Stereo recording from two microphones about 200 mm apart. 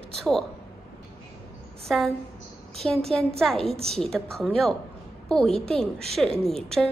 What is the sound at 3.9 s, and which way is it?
A woman's voice, centre (ahead or behind).